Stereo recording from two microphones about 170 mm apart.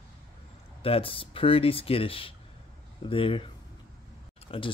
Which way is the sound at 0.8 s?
35° left (ahead or behind).